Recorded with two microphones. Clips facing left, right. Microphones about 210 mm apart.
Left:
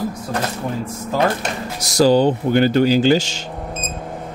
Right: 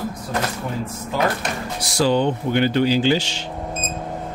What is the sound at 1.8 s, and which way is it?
Speech, 40° left (ahead or behind).